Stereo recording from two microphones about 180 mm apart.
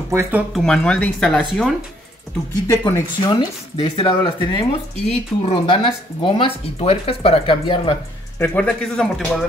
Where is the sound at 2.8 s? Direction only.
25° left (ahead or behind).